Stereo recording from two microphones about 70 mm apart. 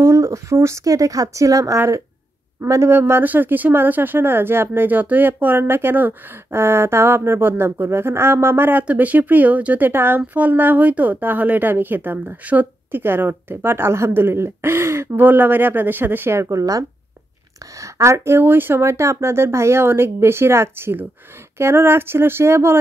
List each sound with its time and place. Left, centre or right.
0.0 s a woman's voice: right
2.6 s speech: right
18.4 s speech: right